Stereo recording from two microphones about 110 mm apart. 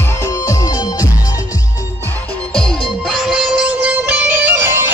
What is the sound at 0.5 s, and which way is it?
Music, 30° left (ahead or behind).